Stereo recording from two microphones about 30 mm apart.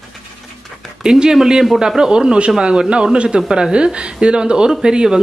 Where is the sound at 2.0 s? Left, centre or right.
Right.